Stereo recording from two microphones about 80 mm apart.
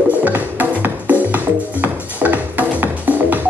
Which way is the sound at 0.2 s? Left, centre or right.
Right.